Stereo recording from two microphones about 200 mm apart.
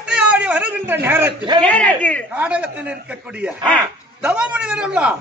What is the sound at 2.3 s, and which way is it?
Speech, 5° right (ahead or behind).